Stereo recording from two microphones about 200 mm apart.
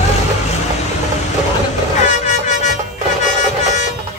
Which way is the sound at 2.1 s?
35° left (ahead or behind).